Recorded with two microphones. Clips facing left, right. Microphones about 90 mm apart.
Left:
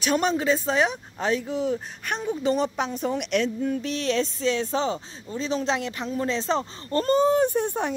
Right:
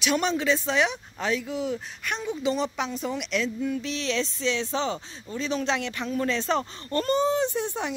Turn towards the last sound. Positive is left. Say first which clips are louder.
# left 4 dB
turn(degrees=50)  # may be behind; listen again after turning